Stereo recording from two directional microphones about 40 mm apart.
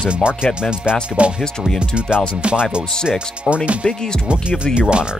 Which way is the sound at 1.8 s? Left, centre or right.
Right.